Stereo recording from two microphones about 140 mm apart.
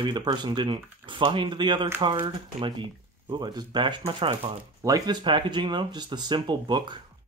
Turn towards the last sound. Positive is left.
turn(degrees=-30)  # may be behind; listen again after turning